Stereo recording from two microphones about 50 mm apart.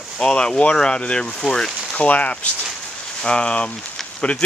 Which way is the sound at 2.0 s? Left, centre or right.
Left.